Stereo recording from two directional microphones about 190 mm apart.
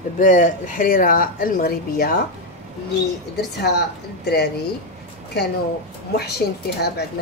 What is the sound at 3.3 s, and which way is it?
A woman's voice, 60° left (ahead or behind).